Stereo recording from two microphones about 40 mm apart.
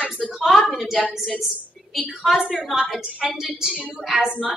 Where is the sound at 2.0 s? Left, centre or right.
Centre.